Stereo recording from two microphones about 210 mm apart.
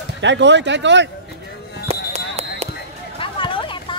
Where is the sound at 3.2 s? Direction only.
25° left (ahead or behind).